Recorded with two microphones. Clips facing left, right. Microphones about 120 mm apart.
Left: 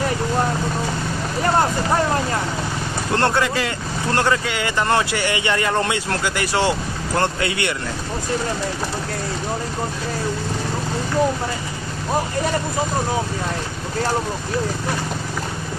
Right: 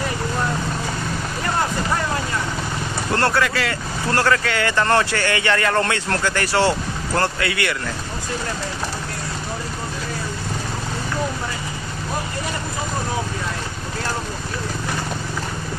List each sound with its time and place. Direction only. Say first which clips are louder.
3.2 s speech: left 1 dB; 20° left (ahead or behind)